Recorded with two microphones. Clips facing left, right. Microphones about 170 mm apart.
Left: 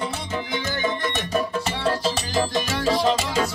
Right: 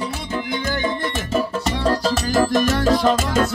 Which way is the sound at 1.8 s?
45° right (ahead or behind).